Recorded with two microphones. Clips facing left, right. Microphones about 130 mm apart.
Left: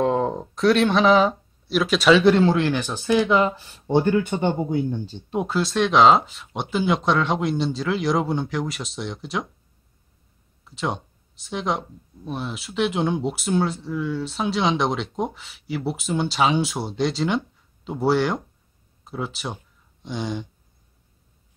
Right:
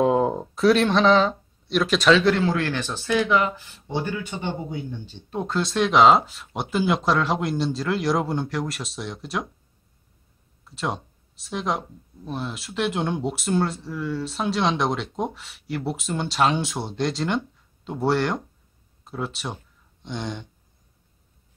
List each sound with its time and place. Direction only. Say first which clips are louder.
0.0 s speech: right 1 dB; 5° right (ahead or behind)
2.2 s speech: left 4 dB; 25° left (ahead or behind)
2.7 s speech: left 3 dB; 15° left (ahead or behind)
3.3 s speech: left 2 dB; 30° left (ahead or behind); by 5.1 s 45° left (ahead or behind)
5.5 s speech: even; centre (ahead or behind)
10.6 s speech: left 1 dB; centre (ahead or behind)